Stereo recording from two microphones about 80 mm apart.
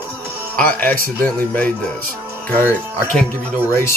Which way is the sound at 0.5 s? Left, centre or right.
Centre.